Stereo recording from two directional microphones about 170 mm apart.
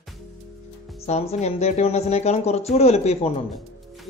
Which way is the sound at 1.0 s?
35° left (ahead or behind).